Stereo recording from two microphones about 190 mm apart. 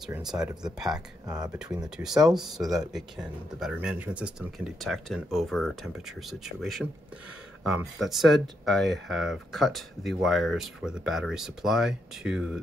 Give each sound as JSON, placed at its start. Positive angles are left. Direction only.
{"t": 0.0, "sound": "speech", "side_deg": 0}
{"t": 1.2, "sound": "speech", "side_deg": -20}
{"t": 2.0, "sound": "speech", "side_deg": -5}